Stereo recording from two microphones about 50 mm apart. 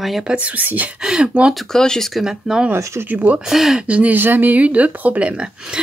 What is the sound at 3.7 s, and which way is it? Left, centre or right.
Speech, right.